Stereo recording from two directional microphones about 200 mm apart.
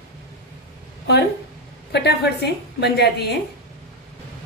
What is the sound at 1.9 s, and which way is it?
A woman's voice, 55° left (ahead or behind).